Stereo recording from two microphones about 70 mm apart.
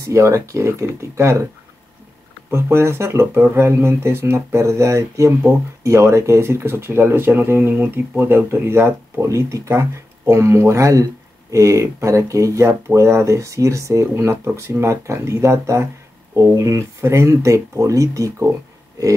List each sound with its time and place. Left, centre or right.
0.0 s speech: right
2.5 s speech: right
7.7 s speech: right